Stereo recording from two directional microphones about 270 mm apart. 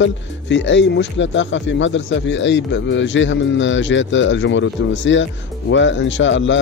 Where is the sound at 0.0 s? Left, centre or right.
Left.